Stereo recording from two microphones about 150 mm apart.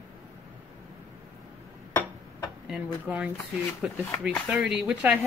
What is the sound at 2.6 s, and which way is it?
Speech, 5° right (ahead or behind).